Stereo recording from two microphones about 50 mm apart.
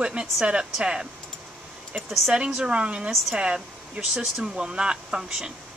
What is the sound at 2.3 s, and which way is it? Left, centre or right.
A woman's voice, centre.